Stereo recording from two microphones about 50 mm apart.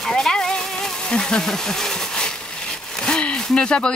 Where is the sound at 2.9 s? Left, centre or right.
Centre.